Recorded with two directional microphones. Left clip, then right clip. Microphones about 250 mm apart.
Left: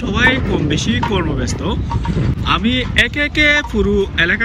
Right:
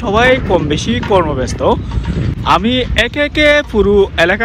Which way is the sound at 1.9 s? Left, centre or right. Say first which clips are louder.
Left 1 dB; left.